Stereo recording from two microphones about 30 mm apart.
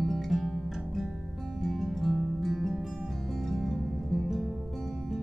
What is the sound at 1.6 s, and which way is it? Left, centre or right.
Music, centre.